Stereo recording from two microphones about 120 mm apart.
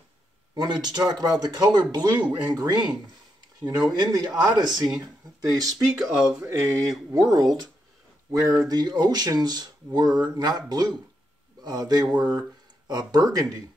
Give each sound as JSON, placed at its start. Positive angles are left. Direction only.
{"t": 0.6, "sound": "speech", "side_deg": -35}
{"t": 5.9, "sound": "speech", "side_deg": -5}
{"t": 6.4, "sound": "speech", "side_deg": -25}